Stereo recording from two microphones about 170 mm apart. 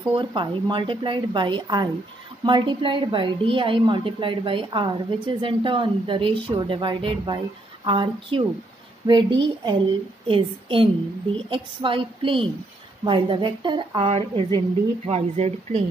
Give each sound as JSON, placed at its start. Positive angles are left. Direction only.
{"t": 0.1, "sound": "a woman's voice", "side_deg": -30}